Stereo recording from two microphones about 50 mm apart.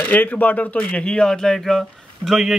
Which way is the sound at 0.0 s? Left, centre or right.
Left.